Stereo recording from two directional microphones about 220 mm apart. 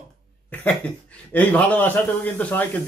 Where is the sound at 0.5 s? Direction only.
5° left (ahead or behind).